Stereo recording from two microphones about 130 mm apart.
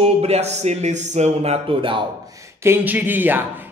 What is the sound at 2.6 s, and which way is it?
Speech, 15° right (ahead or behind).